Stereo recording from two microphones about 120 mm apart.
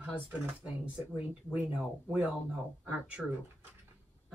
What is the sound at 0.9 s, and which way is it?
Speech, 10° right (ahead or behind).